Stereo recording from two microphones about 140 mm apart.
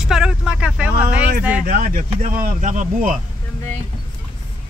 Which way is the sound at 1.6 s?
85° right.